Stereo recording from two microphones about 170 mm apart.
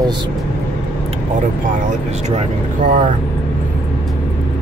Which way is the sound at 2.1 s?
40° right (ahead or behind).